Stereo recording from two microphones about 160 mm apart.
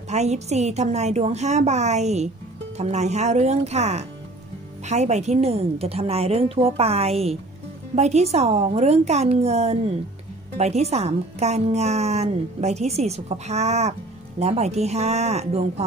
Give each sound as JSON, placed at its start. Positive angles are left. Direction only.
{"t": 0.1, "sound": "a woman's voice", "side_deg": -45}